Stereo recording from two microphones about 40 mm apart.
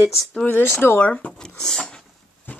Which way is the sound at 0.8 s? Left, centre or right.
Left.